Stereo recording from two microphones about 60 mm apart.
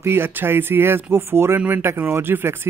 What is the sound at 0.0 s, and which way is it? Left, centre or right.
Speech, right.